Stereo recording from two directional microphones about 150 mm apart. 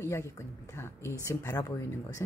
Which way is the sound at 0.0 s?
15° left (ahead or behind).